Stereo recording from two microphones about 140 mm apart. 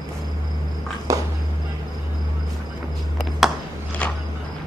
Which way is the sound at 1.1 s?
20° right (ahead or behind).